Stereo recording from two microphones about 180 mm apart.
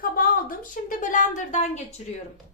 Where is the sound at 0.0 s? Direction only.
50° left (ahead or behind).